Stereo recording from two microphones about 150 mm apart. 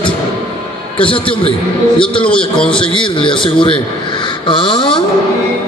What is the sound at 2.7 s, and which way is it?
Speech, 35° left (ahead or behind).